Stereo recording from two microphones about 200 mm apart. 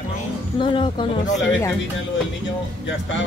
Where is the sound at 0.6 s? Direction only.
25° left (ahead or behind).